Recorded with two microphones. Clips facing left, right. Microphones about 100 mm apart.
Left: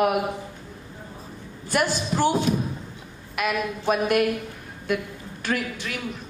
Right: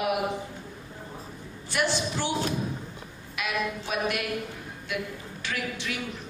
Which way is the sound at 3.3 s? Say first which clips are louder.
Left 4 dB; 50° left (ahead or behind).